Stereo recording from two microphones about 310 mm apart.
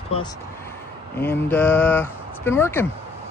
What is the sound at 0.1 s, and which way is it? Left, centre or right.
Speech, centre.